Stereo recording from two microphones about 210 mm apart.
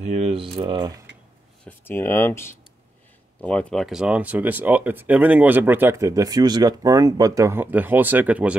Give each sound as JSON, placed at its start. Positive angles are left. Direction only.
{"t": 0.0, "sound": "speech", "side_deg": -30}
{"t": 1.6, "sound": "speech", "side_deg": 10}